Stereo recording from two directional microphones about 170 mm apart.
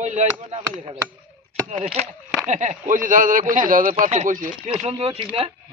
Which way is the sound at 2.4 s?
45° right (ahead or behind).